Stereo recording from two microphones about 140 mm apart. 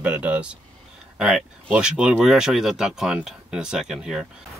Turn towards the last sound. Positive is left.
turn(degrees=-5)  # may be behind; listen again after turning